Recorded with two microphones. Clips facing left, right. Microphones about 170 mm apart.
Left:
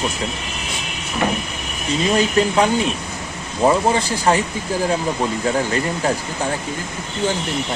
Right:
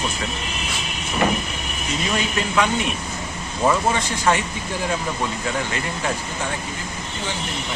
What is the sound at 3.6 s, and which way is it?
Speech, 30° left (ahead or behind).